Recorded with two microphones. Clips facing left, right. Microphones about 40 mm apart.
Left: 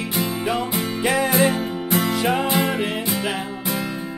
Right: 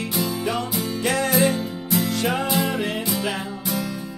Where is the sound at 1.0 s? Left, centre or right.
Centre.